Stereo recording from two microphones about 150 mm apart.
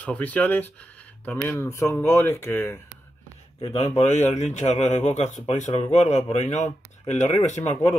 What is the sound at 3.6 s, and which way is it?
A man's voice, 45° left (ahead or behind).